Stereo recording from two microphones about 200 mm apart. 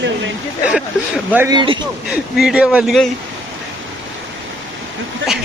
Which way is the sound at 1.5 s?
20° right (ahead or behind).